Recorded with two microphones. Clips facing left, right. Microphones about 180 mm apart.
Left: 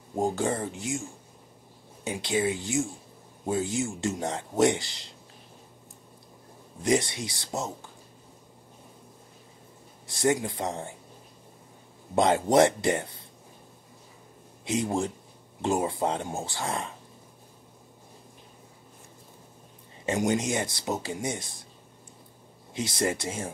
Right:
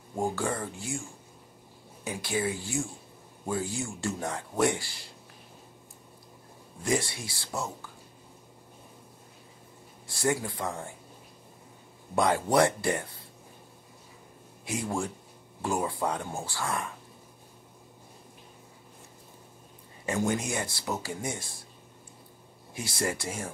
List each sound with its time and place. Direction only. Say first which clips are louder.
0.1 s speech: left 3 dB; 20° left (ahead or behind)
2.0 s speech: left 3 dB; 20° left (ahead or behind)
6.8 s speech: left 4 dB; 20° left (ahead or behind)
10.0 s speech: left 3 dB; 20° left (ahead or behind)
12.2 s speech: left 3 dB; 20° left (ahead or behind)
14.6 s speech: left 4 dB; 20° left (ahead or behind)
20.1 s speech: left 3 dB; 20° left (ahead or behind)
22.8 s speech: left 4 dB; 20° left (ahead or behind)